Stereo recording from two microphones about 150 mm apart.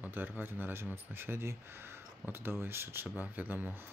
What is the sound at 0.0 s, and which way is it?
Speech, 15° right (ahead or behind).